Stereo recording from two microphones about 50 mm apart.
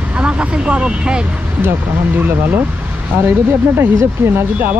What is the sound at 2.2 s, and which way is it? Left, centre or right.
Speech, right.